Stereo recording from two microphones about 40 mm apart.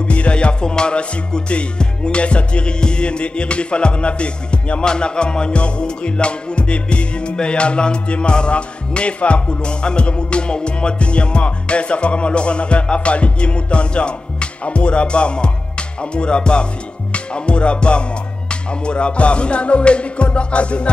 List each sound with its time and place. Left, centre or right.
0.0 s music: left